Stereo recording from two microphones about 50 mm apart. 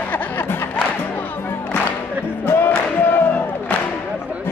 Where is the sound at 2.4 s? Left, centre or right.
Left.